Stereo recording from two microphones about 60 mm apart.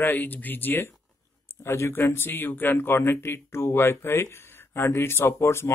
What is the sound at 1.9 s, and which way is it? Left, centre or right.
Speech, left.